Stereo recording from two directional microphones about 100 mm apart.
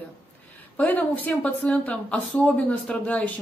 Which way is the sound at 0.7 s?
15° left (ahead or behind).